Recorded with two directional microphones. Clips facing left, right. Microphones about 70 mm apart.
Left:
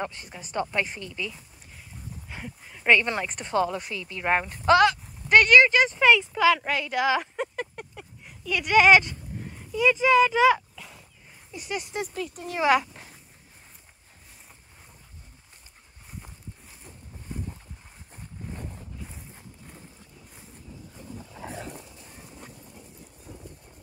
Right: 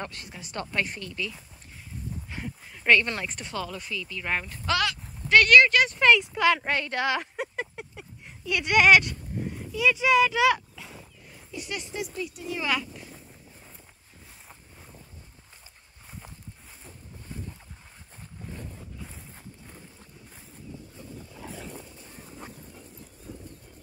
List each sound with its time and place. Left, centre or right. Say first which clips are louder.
0.0 s speech: left 4 dB; centre
2.2 s speech: right 2 dB; centre
3.5 s speech: left 9 dB; left
5.3 s speech: left 1 dB; centre
7.3 s a sound: left 2 dB; centre
9.7 s speech: left 2 dB; centre
11.9 s speech: left 1 dB; left
12.4 s speech: left 8 dB; left